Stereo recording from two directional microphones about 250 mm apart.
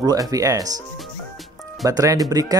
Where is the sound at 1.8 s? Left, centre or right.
Centre.